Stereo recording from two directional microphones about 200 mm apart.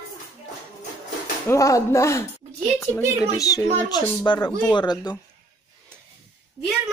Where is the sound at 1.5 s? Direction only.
15° left (ahead or behind).